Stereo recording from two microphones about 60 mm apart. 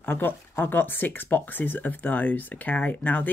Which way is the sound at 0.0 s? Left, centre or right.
Left.